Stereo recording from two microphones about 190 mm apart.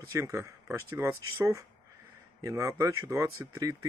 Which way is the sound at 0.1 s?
15° right (ahead or behind).